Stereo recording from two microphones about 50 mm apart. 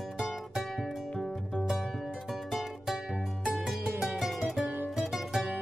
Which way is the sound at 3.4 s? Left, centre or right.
Centre.